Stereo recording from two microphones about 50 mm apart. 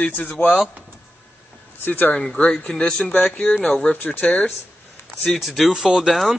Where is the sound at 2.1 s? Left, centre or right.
Centre.